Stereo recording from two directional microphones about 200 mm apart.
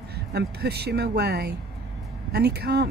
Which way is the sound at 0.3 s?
55° right (ahead or behind).